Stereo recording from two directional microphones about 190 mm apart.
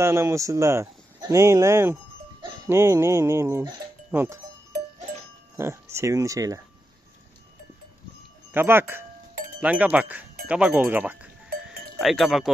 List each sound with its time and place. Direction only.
0.0 s speech: 15° right (ahead or behind)
5.6 s speech: 15° right (ahead or behind)
8.5 s speech: 10° right (ahead or behind)
10.4 s cowbell: 5° right (ahead or behind)